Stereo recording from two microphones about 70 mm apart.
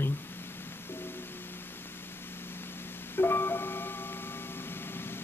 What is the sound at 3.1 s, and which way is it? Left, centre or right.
Music, left.